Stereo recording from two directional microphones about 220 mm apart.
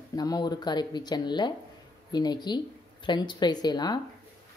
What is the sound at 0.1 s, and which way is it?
Speech, 15° left (ahead or behind).